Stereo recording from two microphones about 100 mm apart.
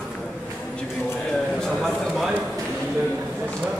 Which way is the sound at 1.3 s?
Centre (ahead or behind).